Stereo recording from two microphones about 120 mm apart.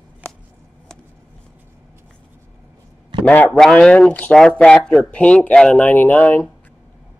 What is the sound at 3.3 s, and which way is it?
Speech, 15° left (ahead or behind).